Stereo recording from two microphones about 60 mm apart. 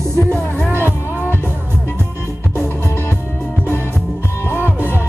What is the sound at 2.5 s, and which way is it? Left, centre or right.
Music, left.